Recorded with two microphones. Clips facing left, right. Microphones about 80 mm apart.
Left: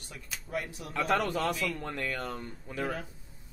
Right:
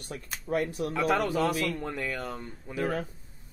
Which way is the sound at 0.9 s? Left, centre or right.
Centre.